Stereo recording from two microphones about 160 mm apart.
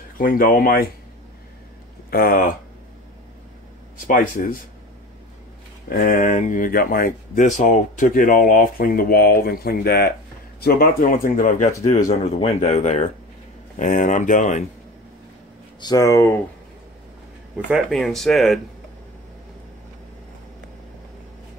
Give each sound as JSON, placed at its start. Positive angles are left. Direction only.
{"t": 0.2, "sound": "speech", "side_deg": 60}
{"t": 2.0, "sound": "speech", "side_deg": 70}
{"t": 4.1, "sound": "speech", "side_deg": 60}
{"t": 5.9, "sound": "speech", "side_deg": 65}
{"t": 12.1, "sound": "speech", "side_deg": 40}
{"t": 15.8, "sound": "speech", "side_deg": 20}
{"t": 17.6, "sound": "speech", "side_deg": 0}